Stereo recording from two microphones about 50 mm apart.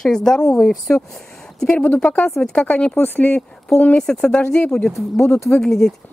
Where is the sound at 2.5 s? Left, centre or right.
Left.